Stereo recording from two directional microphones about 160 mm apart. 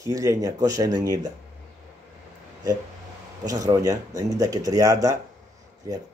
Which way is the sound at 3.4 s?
25° right (ahead or behind).